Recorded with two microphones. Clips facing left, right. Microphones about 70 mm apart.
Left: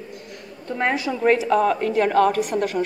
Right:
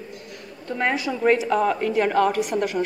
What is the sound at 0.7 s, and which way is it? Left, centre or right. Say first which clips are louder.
Speech: left 1 dB; left.